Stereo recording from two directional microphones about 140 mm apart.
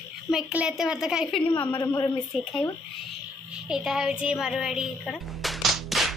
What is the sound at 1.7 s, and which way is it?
Speech, 30° left (ahead or behind).